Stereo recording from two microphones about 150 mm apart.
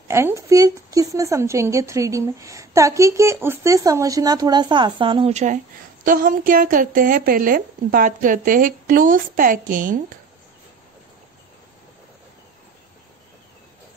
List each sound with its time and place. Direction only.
0.1 s speech: 20° right (ahead or behind); by 5.3 s 35° right (ahead or behind)
5.3 s a woman's voice: 55° right (ahead or behind)